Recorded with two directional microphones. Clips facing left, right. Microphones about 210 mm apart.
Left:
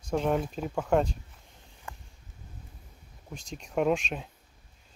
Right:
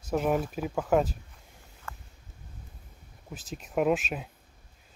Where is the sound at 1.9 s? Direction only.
15° left (ahead or behind).